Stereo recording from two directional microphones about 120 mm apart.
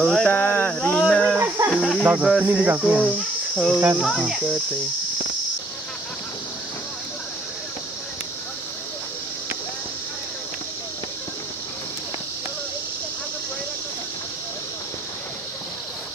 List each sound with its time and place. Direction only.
0.0 s speech: 5° left (ahead or behind)
0.3 s a sound: 15° left (ahead or behind)
1.3 s music: 20° right (ahead or behind)
1.7 s music: 5° left (ahead or behind)
2.4 s speech: 15° right (ahead or behind)
3.5 s speech: 5° left (ahead or behind)
3.8 s speech: 15° right (ahead or behind)